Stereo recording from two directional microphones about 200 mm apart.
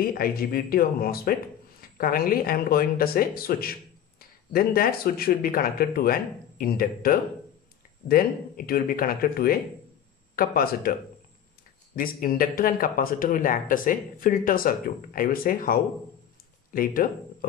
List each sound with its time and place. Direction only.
0.0 s speech: 45° left (ahead or behind)